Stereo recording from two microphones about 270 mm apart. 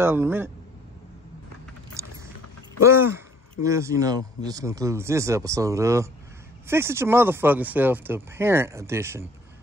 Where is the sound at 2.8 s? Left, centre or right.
Centre.